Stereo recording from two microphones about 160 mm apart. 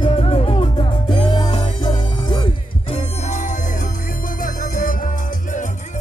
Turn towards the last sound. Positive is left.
turn(degrees=60)  # may be behind; listen again after turning